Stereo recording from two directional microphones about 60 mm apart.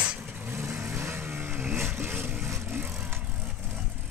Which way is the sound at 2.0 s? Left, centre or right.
Right.